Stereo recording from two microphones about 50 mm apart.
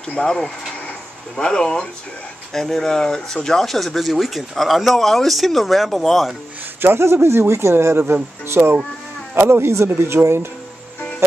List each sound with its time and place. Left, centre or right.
0.2 s speech: centre
6.8 s speech: right